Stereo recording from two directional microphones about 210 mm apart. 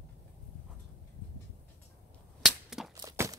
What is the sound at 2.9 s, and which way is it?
Horse, 15° right (ahead or behind).